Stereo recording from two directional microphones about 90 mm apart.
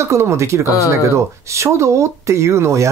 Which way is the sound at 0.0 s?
30° right (ahead or behind).